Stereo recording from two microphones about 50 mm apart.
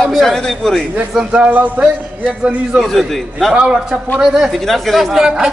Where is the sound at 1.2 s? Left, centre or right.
Right.